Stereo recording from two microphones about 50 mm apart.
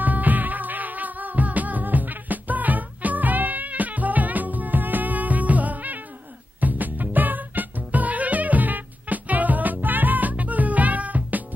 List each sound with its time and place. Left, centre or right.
0.0 s music: right